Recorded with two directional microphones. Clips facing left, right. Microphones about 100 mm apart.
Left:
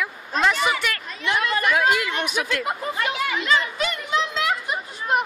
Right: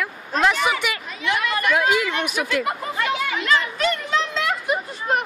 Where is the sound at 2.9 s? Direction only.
5° left (ahead or behind).